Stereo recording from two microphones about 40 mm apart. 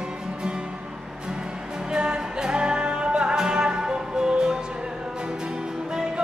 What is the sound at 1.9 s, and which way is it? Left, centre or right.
Music, right.